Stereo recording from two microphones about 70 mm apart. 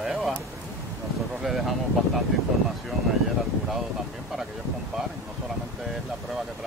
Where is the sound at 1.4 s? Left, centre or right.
Centre.